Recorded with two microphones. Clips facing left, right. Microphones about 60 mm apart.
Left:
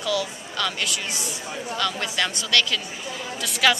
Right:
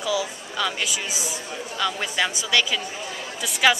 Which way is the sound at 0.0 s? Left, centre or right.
Centre.